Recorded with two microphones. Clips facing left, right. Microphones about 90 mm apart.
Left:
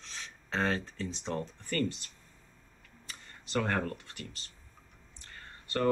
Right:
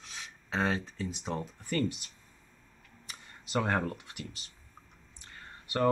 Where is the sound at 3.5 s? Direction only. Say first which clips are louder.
Right 1 dB; 15° right (ahead or behind).